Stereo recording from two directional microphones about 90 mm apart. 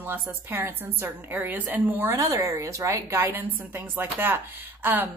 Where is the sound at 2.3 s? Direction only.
35° right (ahead or behind).